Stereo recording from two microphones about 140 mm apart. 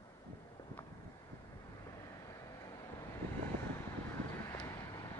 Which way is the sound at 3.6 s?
20° left (ahead or behind).